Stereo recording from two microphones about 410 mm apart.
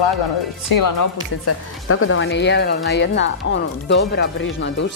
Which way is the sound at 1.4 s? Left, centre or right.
Left.